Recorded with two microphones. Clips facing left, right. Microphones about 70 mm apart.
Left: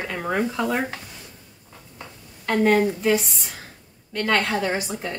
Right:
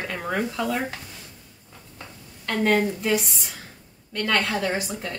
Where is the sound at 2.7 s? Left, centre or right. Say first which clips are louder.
Left 3 dB; centre.